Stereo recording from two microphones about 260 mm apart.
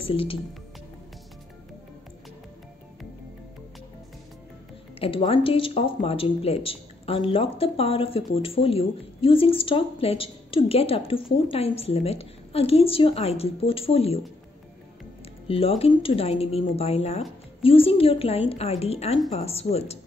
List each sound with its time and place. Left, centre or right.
0.0 s speech: left
5.0 s speech: left
15.4 s speech: left